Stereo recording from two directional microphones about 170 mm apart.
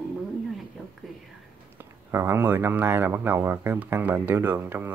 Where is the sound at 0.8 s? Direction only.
5° right (ahead or behind).